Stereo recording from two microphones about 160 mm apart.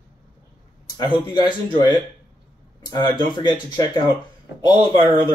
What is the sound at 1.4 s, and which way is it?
Speech, 30° left (ahead or behind).